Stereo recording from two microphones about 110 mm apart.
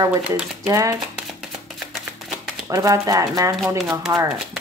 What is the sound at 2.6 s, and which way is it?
A woman's voice, 30° right (ahead or behind).